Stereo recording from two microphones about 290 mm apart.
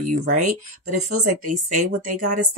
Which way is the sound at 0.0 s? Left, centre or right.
Right.